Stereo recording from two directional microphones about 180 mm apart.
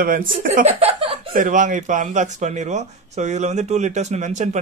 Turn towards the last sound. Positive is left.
turn(degrees=-40)  # may be behind; listen again after turning